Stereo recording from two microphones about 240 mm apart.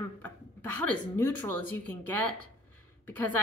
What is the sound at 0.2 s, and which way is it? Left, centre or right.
A woman's voice, centre.